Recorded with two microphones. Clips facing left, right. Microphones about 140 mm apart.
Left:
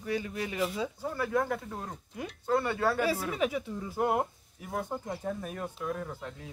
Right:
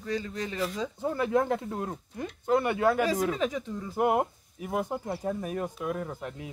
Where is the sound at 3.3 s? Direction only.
10° left (ahead or behind).